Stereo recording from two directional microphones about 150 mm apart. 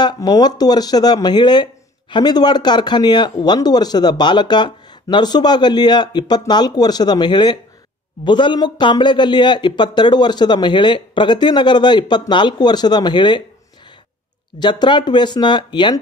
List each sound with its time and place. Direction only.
0.0 s a man's voice: 30° left (ahead or behind)
14.6 s a man's voice: 30° left (ahead or behind)